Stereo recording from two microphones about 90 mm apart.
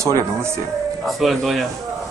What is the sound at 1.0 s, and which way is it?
Speech, centre (ahead or behind).